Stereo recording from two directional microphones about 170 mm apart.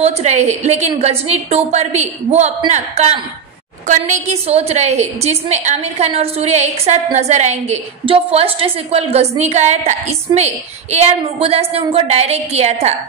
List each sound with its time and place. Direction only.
0.0 s a woman's voice: 40° right (ahead or behind)